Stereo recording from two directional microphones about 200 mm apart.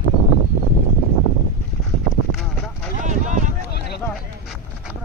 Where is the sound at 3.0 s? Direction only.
40° right (ahead or behind).